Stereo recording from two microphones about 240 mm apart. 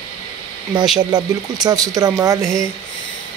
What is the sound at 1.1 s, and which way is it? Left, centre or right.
Speech, centre.